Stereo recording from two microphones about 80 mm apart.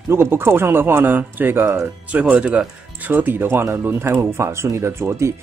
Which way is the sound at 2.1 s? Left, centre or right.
Centre.